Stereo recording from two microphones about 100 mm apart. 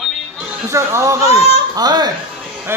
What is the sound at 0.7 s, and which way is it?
Speech, 30° right (ahead or behind).